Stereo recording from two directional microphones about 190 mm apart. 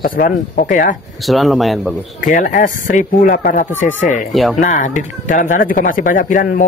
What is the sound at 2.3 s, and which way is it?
Speech, 45° left (ahead or behind).